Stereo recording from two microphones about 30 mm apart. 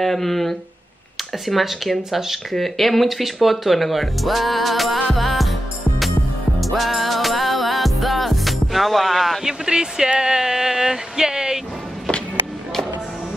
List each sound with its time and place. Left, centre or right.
0.0 s speech: centre
1.4 s speech: centre
2.5 s speech: centre
6.6 s music: centre
9.4 s a sound: right